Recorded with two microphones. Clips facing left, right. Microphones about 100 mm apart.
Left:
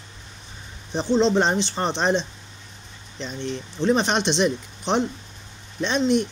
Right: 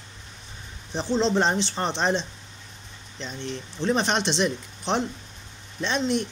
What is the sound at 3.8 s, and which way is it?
Speech, 5° left (ahead or behind).